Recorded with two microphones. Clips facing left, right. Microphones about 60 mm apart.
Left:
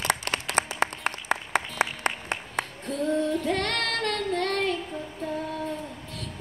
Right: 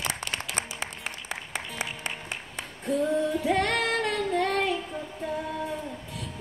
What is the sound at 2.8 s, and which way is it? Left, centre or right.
Female singing, centre.